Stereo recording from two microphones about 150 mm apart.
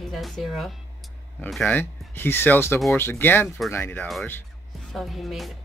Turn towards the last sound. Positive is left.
turn(degrees=0)  # may be behind; listen again after turning